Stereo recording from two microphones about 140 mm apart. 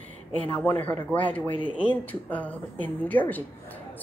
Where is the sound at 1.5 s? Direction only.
35° left (ahead or behind).